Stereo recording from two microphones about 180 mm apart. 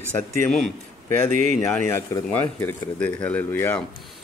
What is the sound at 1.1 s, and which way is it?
Speech, 45° right (ahead or behind).